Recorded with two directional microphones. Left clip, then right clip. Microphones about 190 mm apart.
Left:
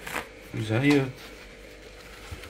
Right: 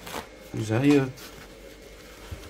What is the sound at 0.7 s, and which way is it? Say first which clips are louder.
Speech: right 1 dB; 5° right (ahead or behind).